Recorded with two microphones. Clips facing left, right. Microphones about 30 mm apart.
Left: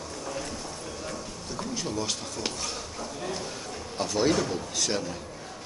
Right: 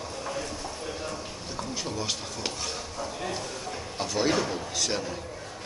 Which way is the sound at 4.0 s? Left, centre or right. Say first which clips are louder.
Left 1 dB; centre.